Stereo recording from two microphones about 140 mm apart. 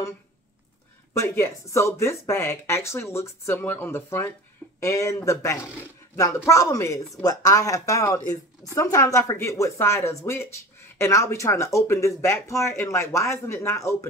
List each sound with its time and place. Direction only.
1.1 s speech: 20° left (ahead or behind)